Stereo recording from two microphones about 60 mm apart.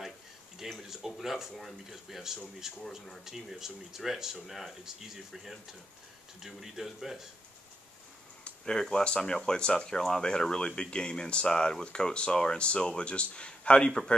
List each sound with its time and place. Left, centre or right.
0.7 s speech: centre
8.5 s speech: centre